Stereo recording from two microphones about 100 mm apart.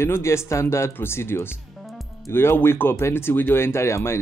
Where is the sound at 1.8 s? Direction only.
Centre (ahead or behind).